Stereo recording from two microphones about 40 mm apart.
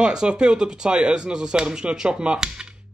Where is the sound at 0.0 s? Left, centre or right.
Right.